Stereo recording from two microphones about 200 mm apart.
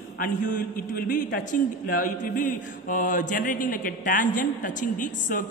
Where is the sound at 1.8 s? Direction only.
45° left (ahead or behind).